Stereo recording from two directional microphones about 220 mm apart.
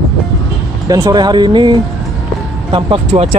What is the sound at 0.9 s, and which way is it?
Speech, 15° right (ahead or behind).